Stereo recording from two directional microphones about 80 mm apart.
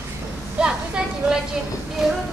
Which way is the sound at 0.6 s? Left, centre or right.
Centre.